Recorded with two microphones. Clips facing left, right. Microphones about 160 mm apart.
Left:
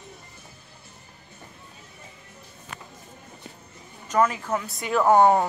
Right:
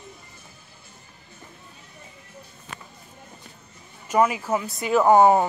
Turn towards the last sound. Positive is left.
turn(degrees=-5)  # may be behind; listen again after turning